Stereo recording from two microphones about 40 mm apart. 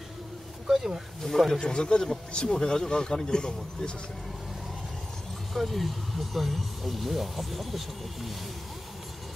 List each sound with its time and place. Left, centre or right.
0.7 s speech: centre
1.5 s speech: centre
5.5 s speech: centre